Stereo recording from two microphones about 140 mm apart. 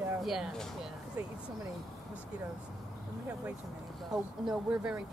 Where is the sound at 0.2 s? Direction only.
Centre (ahead or behind).